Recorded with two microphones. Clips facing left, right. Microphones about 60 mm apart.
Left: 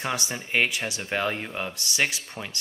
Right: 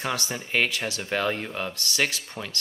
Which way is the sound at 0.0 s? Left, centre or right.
Centre.